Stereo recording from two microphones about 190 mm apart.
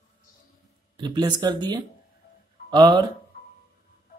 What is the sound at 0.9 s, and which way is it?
A man's voice, 20° right (ahead or behind).